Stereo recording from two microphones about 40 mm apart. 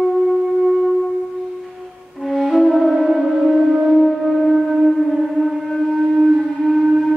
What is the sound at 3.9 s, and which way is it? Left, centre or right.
Music, centre.